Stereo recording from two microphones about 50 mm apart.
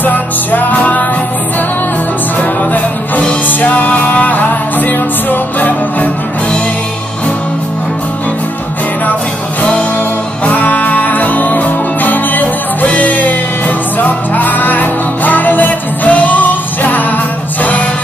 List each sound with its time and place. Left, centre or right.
0.0 s music: left
3.4 s music: left
10.4 s music: left